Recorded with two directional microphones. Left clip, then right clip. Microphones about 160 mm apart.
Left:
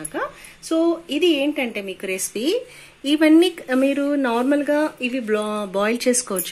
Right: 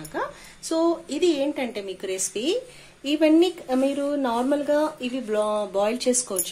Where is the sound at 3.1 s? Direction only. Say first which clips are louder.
Left 4 dB; 55° left (ahead or behind).